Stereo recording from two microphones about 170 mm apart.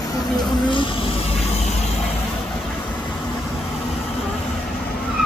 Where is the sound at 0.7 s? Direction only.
30° left (ahead or behind).